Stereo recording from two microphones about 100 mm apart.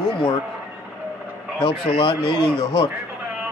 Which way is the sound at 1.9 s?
55° left (ahead or behind).